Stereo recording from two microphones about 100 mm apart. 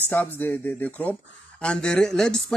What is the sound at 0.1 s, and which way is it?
Speech, 20° left (ahead or behind).